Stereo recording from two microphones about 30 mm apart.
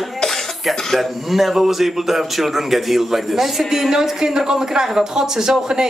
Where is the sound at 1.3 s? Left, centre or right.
Centre.